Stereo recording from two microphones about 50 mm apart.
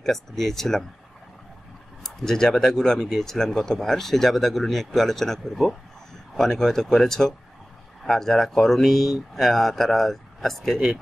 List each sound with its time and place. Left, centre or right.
0.0 s speech: centre
2.0 s speech: centre